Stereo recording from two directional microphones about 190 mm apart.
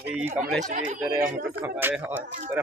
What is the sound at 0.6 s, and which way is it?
Speech, 40° right (ahead or behind).